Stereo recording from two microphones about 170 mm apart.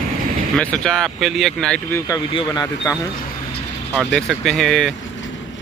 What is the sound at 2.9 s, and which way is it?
Speech, 15° left (ahead or behind).